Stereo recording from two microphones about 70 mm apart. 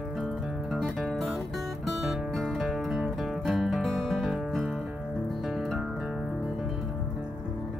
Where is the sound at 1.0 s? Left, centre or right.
Centre.